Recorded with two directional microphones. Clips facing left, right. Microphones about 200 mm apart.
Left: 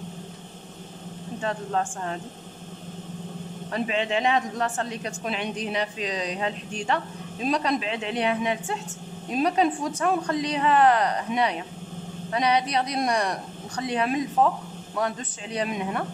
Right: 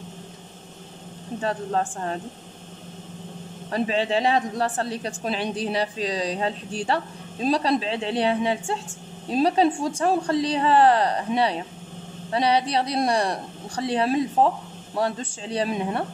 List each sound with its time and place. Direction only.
1.4 s speech: 35° right (ahead or behind)
3.7 s speech: 35° right (ahead or behind)